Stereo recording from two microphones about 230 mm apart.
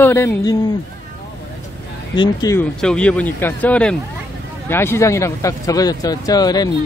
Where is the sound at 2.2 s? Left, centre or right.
Centre.